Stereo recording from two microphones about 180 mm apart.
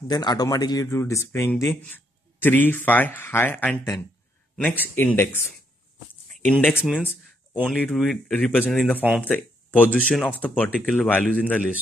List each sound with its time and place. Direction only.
0.1 s speech: 20° left (ahead or behind)
6.4 s speech: 10° left (ahead or behind)